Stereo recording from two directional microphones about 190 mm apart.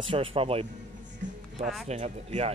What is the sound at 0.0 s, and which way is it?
Speech, 30° right (ahead or behind).